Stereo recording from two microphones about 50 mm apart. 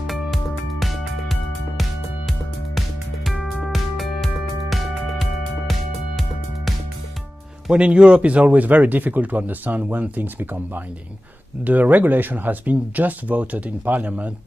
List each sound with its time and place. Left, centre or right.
0.0 s music: centre
3.6 s music: centre
7.7 s speech: right